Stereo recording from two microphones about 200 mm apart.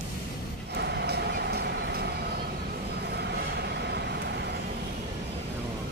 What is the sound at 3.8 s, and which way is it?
Vehicle, 55° right (ahead or behind).